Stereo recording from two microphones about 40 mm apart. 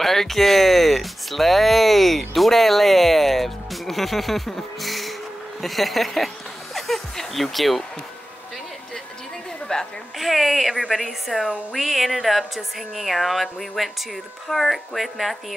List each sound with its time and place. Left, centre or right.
0.0 s speech: centre
5.6 s music: centre
9.7 s a woman's voice: left
10.1 s speech: centre